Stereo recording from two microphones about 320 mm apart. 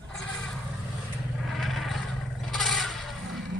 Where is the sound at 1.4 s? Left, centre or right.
Centre.